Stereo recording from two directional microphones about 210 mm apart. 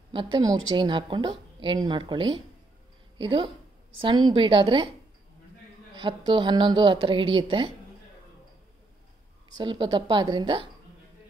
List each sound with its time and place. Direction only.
0.1 s speech: 20° right (ahead or behind)
5.9 s speech: 25° right (ahead or behind)
9.6 s speech: 20° right (ahead or behind)